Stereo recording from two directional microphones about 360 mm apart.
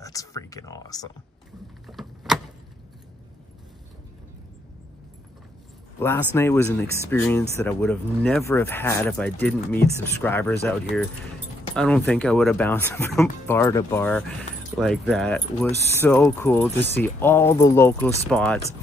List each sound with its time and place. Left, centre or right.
0.0 s speech: centre
1.9 s a sound: centre
5.9 s speech: centre